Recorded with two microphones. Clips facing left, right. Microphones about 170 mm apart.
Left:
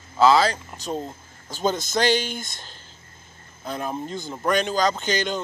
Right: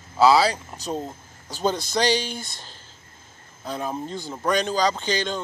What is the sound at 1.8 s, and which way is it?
Speech, 35° right (ahead or behind).